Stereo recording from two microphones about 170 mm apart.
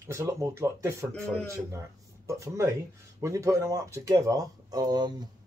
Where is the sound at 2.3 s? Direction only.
15° right (ahead or behind).